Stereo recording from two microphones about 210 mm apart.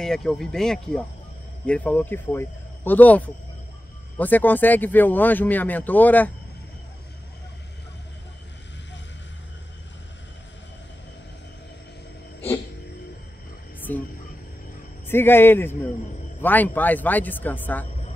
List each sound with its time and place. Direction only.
0.0 s speech: centre (ahead or behind)
13.7 s music: 10° left (ahead or behind)
15.0 s speech: 10° left (ahead or behind)